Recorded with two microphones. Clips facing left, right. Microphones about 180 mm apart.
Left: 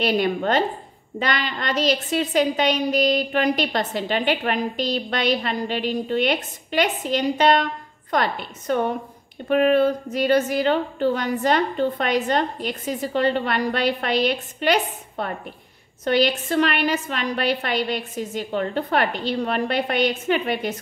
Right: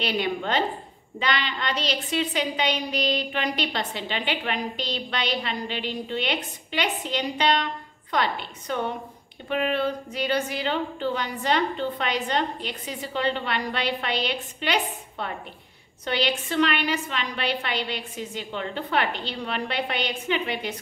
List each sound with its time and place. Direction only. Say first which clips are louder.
0.0 s a woman's voice: left 6 dB; 45° left (ahead or behind)